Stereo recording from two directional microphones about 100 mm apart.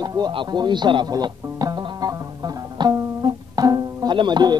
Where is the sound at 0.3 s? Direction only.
50° right (ahead or behind).